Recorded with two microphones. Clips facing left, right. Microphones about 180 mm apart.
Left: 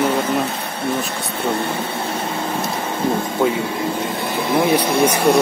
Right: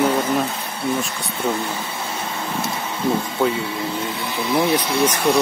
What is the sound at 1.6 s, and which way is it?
Speech, 55° left (ahead or behind).